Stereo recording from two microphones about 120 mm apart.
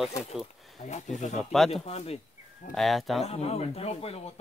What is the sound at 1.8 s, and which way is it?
Speech, 60° left (ahead or behind).